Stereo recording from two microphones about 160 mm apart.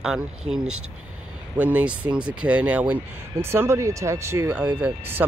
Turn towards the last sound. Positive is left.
turn(degrees=-15)  # may be behind; listen again after turning